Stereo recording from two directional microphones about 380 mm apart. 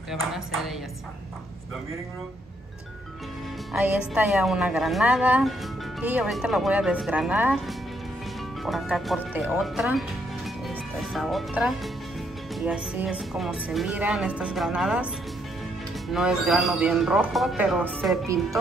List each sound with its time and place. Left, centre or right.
0.1 s speech: centre
3.7 s speech: centre
16.1 s speech: centre